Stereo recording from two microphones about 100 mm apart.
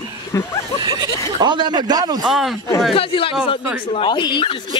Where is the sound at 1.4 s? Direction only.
45° right (ahead or behind).